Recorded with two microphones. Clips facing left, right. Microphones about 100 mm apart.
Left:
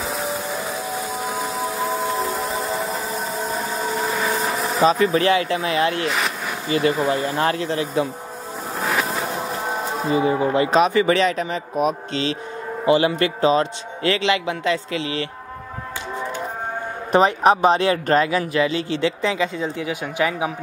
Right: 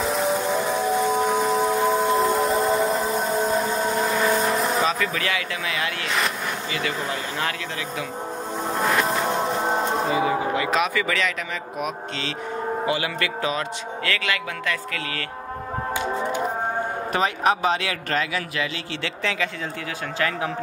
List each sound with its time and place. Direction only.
0.0 s a sound: centre (ahead or behind)
4.8 s speech: 35° left (ahead or behind)
6.0 s speech: centre (ahead or behind)
7.1 s speech: 35° left (ahead or behind)
8.7 s music: centre (ahead or behind)
10.1 s a man's voice: 30° left (ahead or behind)
17.1 s a man's voice: 25° left (ahead or behind)